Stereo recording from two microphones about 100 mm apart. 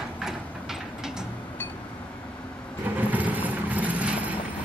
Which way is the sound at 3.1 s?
15° right (ahead or behind).